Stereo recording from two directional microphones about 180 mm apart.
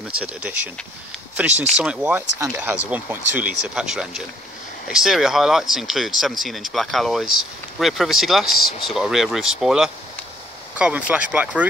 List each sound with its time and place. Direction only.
0.2 s speech: 5° right (ahead or behind)
1.5 s speech: 40° right (ahead or behind)
1.8 s speech: 5° right (ahead or behind)